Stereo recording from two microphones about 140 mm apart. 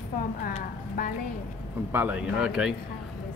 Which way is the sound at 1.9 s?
15° right (ahead or behind).